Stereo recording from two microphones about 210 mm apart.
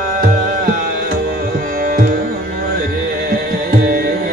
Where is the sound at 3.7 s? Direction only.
40° right (ahead or behind).